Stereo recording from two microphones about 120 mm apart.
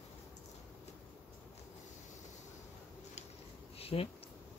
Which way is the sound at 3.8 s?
55° left (ahead or behind).